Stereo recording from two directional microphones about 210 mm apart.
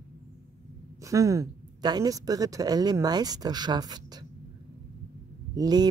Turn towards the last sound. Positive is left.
turn(degrees=-20)  # may be behind; listen again after turning